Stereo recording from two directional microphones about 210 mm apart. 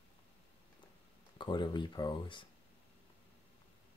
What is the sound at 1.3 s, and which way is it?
Speech, 20° left (ahead or behind).